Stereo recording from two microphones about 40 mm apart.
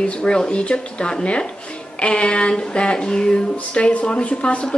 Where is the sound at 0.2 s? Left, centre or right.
Left.